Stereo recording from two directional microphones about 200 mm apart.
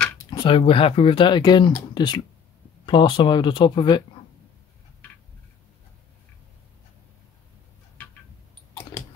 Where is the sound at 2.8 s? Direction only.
25° left (ahead or behind).